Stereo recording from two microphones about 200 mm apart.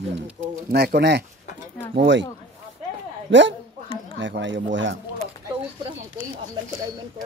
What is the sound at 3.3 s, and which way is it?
Speech, 65° right (ahead or behind).